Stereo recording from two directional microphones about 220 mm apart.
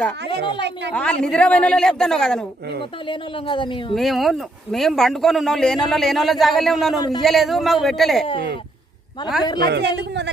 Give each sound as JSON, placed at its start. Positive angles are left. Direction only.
{"t": 0.6, "sound": "a woman's voice", "side_deg": -50}
{"t": 0.9, "sound": "a man's voice", "side_deg": 5}
{"t": 3.1, "sound": "speech", "side_deg": 20}
{"t": 3.9, "sound": "a man's voice", "side_deg": 0}
{"t": 9.6, "sound": "a woman's voice", "side_deg": -50}